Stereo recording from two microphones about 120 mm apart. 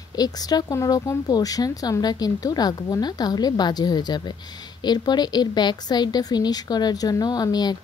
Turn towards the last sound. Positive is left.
turn(degrees=35)  # may be behind; listen again after turning